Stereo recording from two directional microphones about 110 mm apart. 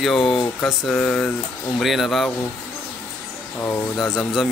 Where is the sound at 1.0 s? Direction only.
10° left (ahead or behind).